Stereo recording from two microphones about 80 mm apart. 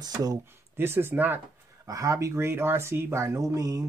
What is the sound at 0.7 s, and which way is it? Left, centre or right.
Speech, right.